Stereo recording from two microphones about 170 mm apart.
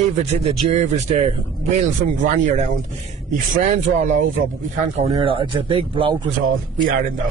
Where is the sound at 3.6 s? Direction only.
45° right (ahead or behind).